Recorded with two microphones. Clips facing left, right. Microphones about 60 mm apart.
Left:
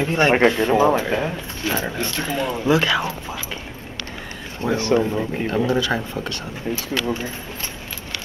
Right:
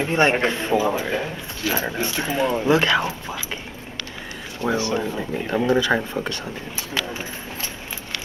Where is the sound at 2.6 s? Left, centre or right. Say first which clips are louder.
Left 1 dB; centre.